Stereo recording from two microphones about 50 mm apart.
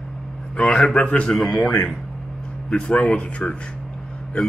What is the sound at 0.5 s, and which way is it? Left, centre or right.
Speech, left.